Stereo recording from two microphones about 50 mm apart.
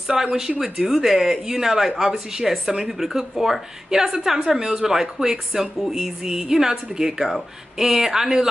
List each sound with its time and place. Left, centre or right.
0.1 s speech: centre